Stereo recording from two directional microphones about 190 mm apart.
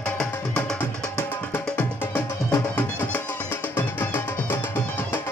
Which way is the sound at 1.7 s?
10° left (ahead or behind).